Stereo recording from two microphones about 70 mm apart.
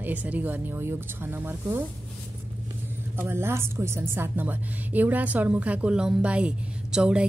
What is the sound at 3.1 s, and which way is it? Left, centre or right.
A woman's voice, right.